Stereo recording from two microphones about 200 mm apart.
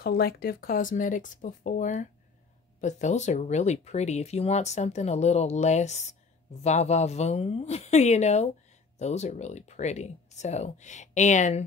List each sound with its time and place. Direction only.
0.0 s speech: 50° left (ahead or behind)